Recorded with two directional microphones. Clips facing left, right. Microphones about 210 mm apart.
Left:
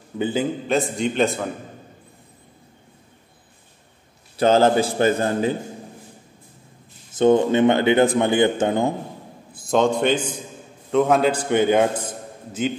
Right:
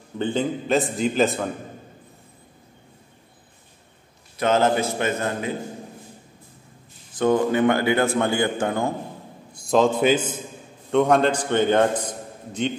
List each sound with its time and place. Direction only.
0.2 s a man's voice: 5° left (ahead or behind)
4.4 s a man's voice: 30° left (ahead or behind)
7.1 s a man's voice: 25° left (ahead or behind)
9.5 s a man's voice: centre (ahead or behind)